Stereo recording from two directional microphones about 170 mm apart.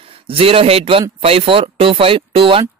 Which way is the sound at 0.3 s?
35° right (ahead or behind).